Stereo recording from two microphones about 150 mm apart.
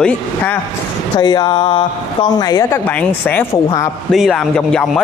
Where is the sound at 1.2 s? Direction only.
30° left (ahead or behind).